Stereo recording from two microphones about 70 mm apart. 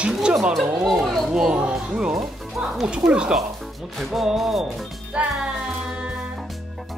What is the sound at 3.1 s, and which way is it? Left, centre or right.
Speech, centre.